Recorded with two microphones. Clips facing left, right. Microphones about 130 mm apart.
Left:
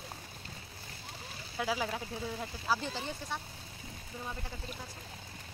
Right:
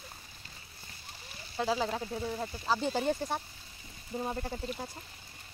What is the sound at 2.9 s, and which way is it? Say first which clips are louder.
Speech: right 8 dB; 45° right (ahead or behind).